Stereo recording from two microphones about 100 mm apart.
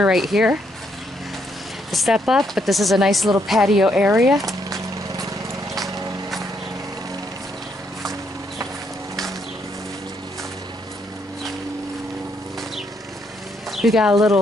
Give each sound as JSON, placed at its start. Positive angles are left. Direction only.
{"t": 0.0, "sound": "speech", "side_deg": -5}
{"t": 1.9, "sound": "speech", "side_deg": 0}
{"t": 4.5, "sound": "lawn mower", "side_deg": -35}
{"t": 13.7, "sound": "a sound", "side_deg": 0}